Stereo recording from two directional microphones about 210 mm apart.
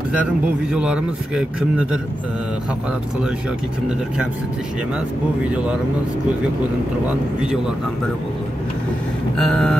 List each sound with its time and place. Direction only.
0.7 s a man's voice: 5° right (ahead or behind)
9.4 s a man's voice: centre (ahead or behind)